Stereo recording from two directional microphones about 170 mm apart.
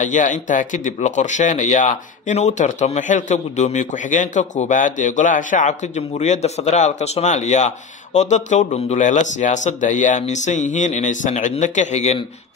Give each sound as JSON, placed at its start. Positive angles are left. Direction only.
{"t": 0.0, "sound": "speech", "side_deg": 45}